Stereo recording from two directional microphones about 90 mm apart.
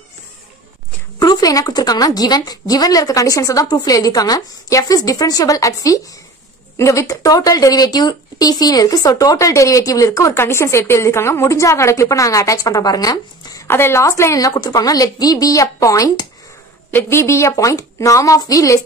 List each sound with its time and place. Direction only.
1.2 s a woman's voice: 45° left (ahead or behind)
13.7 s speech: 25° left (ahead or behind)
16.9 s speech: 25° left (ahead or behind)